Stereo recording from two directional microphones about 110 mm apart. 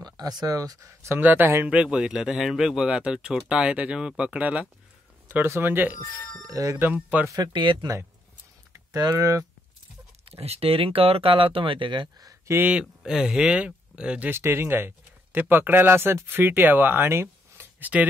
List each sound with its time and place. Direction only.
0.0 s speech: 40° right (ahead or behind)
1.0 s speech: 20° right (ahead or behind)
6.4 s speech: 30° right (ahead or behind)
6.8 s speech: 15° right (ahead or behind)
7.2 s speech: 30° right (ahead or behind)
10.2 s speech: 65° right (ahead or behind); by 12.3 s 45° right (ahead or behind)
12.3 s a sound: 25° right (ahead or behind)
12.6 s speech: 10° right (ahead or behind)
14.3 s speech: 25° right (ahead or behind)